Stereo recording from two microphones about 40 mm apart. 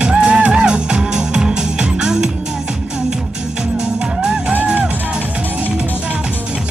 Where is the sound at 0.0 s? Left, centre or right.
Right.